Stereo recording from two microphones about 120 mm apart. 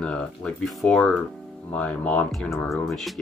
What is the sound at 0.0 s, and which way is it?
Speech, 5° left (ahead or behind).